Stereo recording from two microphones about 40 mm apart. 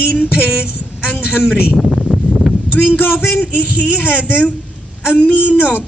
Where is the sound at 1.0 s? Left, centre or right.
Right.